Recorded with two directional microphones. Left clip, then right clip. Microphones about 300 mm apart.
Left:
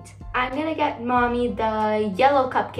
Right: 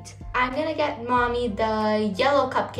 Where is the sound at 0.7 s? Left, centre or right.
Centre.